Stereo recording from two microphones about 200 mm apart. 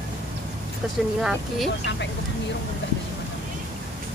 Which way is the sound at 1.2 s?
Centre (ahead or behind).